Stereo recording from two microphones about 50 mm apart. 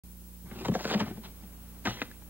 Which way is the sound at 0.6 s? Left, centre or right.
Right.